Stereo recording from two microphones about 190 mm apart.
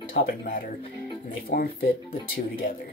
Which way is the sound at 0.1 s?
50° left (ahead or behind).